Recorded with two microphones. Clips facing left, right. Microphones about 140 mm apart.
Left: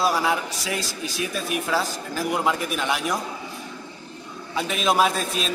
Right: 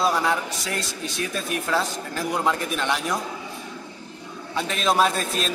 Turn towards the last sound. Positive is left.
turn(degrees=0)  # may be behind; listen again after turning